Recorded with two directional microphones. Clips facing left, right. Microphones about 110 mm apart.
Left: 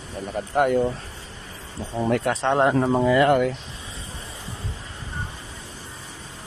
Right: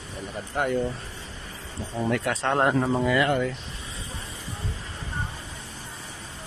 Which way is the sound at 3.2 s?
55° left (ahead or behind).